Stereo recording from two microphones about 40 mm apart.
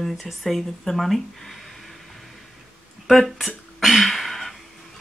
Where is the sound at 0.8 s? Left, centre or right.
Centre.